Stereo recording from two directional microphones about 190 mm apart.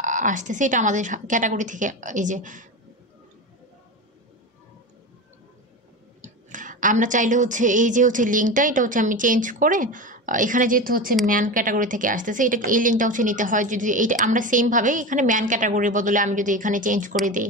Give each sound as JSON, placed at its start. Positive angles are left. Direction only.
{"t": 0.0, "sound": "a woman's voice", "side_deg": -40}
{"t": 6.2, "sound": "a woman's voice", "side_deg": -40}